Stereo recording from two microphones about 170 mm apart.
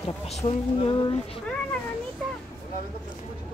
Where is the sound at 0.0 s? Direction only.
35° left (ahead or behind).